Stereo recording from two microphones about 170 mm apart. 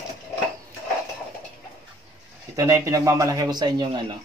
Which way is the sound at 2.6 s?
15° right (ahead or behind).